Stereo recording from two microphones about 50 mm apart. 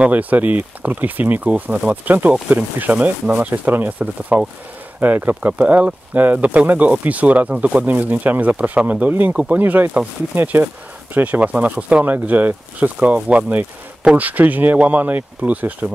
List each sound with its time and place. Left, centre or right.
0.0 s speech: right
5.0 s speech: right
9.5 s speech: right